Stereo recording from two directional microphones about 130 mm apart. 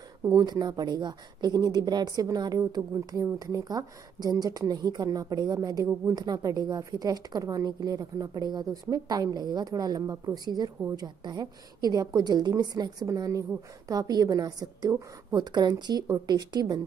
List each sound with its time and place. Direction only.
0.2 s a woman's voice: 30° right (ahead or behind)